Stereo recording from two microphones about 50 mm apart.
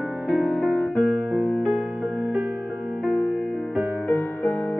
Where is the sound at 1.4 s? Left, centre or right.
Left.